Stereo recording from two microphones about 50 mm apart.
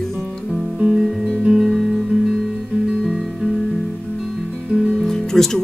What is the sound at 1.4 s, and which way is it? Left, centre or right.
Guitar, centre.